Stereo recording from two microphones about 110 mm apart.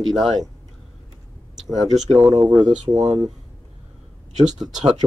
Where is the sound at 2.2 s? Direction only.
35° right (ahead or behind).